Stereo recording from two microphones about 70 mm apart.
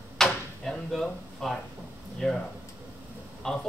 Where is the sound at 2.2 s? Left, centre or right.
Centre.